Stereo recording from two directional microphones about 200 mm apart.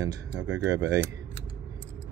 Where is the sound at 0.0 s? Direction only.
20° right (ahead or behind).